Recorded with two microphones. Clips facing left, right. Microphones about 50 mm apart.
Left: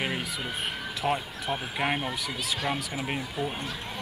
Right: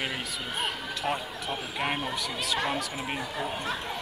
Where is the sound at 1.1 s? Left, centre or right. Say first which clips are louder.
Left 2 dB; centre.